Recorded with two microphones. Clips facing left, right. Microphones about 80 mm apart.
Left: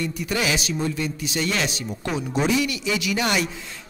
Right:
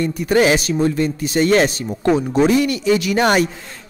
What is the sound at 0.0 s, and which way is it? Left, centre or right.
A man's voice, right.